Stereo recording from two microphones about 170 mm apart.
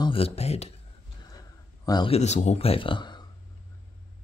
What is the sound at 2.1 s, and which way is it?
Speech, 40° left (ahead or behind).